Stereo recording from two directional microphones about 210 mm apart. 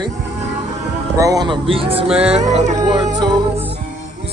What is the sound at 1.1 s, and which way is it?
Speech, 15° right (ahead or behind).